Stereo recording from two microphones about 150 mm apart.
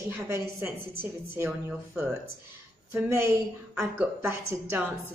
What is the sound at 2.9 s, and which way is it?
A woman's voice, 15° right (ahead or behind).